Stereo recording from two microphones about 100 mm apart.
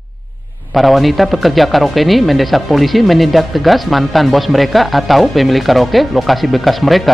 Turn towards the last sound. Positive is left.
turn(degrees=0)  # may be behind; listen again after turning